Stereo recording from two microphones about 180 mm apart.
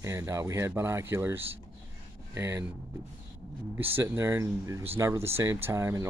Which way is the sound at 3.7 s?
10° right (ahead or behind).